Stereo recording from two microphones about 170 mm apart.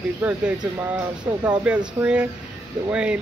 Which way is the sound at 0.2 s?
5° right (ahead or behind).